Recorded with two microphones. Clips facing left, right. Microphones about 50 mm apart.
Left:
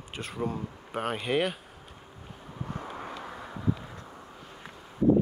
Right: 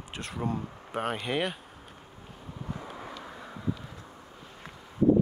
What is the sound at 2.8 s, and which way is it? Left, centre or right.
Vehicle, left.